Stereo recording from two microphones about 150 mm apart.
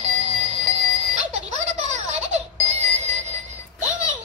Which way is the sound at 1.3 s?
45° right (ahead or behind).